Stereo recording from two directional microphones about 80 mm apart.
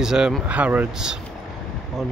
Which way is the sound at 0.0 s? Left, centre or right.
Centre.